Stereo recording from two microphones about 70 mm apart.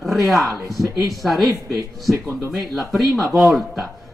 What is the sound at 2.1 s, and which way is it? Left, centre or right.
Speech, right.